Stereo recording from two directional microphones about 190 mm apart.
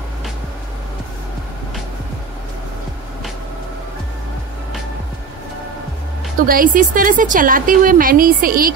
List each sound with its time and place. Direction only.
6.4 s a woman's voice: 45° right (ahead or behind)